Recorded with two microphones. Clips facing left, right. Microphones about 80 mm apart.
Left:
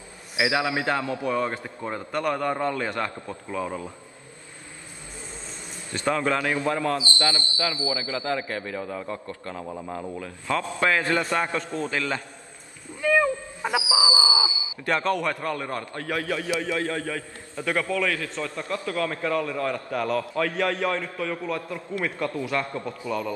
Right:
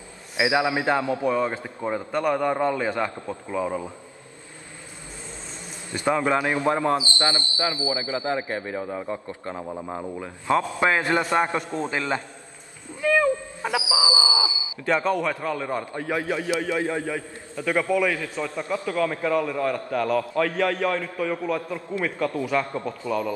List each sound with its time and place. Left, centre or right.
0.4 s a man's voice: centre
5.9 s a man's voice: centre
13.1 s wail: centre
14.9 s a man's voice: centre
15.8 s a man's voice: centre
18.9 s a man's voice: centre
21.3 s a man's voice: centre
22.5 s a man's voice: centre